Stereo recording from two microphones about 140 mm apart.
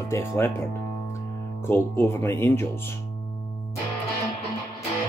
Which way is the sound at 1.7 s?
20° left (ahead or behind).